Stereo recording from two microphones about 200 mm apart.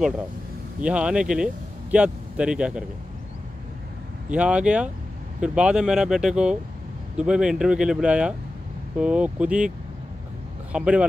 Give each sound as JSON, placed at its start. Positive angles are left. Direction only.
{"t": 0.7, "sound": "speech", "side_deg": -5}
{"t": 4.3, "sound": "speech", "side_deg": -5}
{"t": 10.7, "sound": "speech", "side_deg": -5}